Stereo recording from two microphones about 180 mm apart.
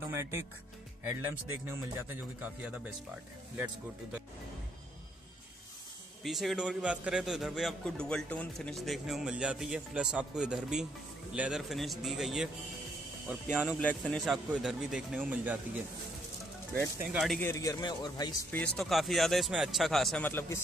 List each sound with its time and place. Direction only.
0.1 s speech: 15° right (ahead or behind)
1.7 s speech: 15° right (ahead or behind)
6.2 s a man's voice: centre (ahead or behind)
17.1 s a man's voice: centre (ahead or behind)
17.4 s speech: 15° left (ahead or behind)
18.5 s a man's voice: 5° left (ahead or behind)